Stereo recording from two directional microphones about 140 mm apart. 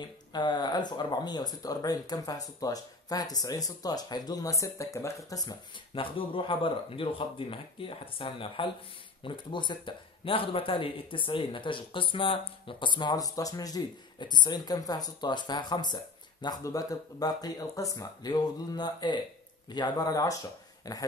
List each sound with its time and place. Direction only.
0.3 s speech: 30° left (ahead or behind)
5.9 s speech: 40° left (ahead or behind)